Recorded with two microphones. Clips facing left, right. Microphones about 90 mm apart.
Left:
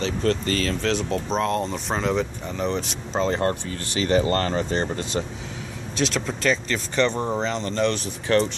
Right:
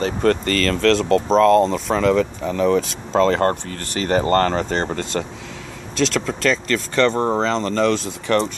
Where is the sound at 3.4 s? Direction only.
50° right (ahead or behind).